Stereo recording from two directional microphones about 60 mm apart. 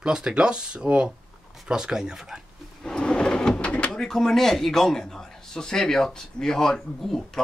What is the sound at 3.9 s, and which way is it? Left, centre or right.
Speech, centre.